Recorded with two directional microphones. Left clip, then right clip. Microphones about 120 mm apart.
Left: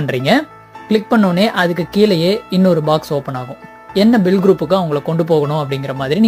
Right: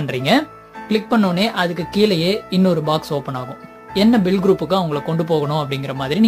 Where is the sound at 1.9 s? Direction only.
35° left (ahead or behind).